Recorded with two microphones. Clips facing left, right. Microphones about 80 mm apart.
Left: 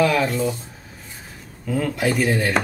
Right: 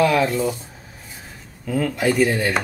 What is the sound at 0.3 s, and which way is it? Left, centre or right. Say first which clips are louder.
Speech: right 1 dB; centre.